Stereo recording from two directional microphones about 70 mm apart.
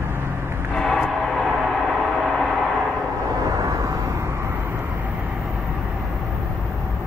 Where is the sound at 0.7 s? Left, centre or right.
Centre.